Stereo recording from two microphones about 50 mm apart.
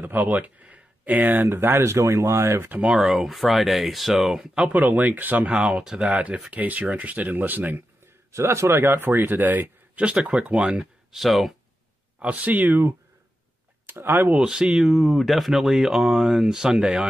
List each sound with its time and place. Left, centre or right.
0.0 s speech: right
1.9 s speech: right
2.7 s speech: right
3.0 s speech: centre
4.7 s speech: right
5.5 s speech: right
8.3 s speech: right
10.3 s speech: centre
10.8 s speech: centre
12.2 s speech: right
13.8 s speech: right
14.3 s speech: centre
15.0 s speech: centre